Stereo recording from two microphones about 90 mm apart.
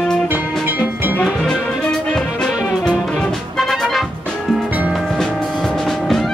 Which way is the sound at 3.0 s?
5° left (ahead or behind).